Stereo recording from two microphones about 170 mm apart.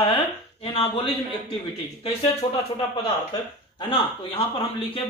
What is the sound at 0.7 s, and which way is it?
Speech, 35° left (ahead or behind).